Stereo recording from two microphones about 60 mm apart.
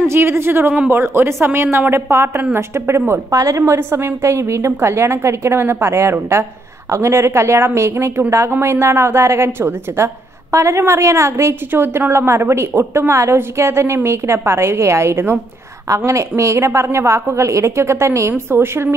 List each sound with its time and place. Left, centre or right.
0.1 s a woman's voice: right
3.3 s a woman's voice: right
11.7 s a woman's voice: right
18.3 s speech: right